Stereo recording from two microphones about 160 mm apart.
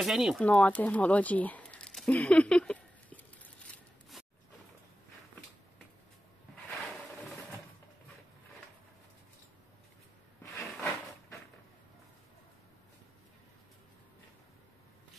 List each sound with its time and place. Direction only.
0.0 s speech: centre (ahead or behind)
0.5 s speech: 10° left (ahead or behind)
3.6 s scissors: 5° left (ahead or behind)
10.4 s a sound: 15° left (ahead or behind)